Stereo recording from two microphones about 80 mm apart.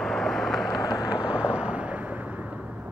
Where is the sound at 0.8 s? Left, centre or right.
Left.